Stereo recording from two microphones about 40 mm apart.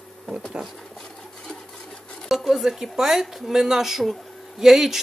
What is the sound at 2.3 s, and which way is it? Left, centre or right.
Speech, centre.